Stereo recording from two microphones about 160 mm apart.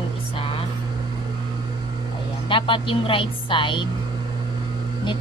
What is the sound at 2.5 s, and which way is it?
A woman's voice, 30° left (ahead or behind).